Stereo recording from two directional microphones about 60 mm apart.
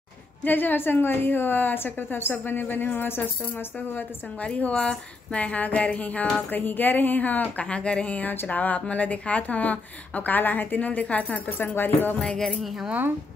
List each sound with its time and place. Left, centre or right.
0.4 s a woman's voice: left
12.2 s music: centre